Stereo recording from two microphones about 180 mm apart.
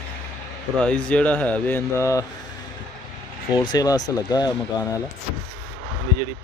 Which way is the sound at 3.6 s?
20° left (ahead or behind).